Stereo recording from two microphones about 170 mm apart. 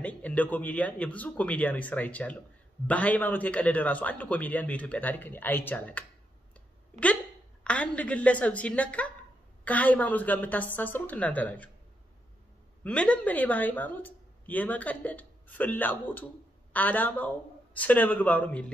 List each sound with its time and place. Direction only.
0.0 s a woman's voice: 10° left (ahead or behind)
12.8 s a woman's voice: 5° left (ahead or behind)